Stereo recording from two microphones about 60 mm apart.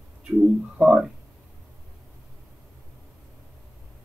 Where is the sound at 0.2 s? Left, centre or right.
Centre.